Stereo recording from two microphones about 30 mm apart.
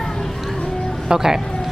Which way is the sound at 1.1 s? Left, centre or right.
Centre.